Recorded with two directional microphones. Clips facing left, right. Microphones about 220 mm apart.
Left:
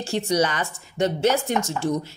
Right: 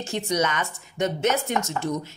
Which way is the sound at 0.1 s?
30° left (ahead or behind).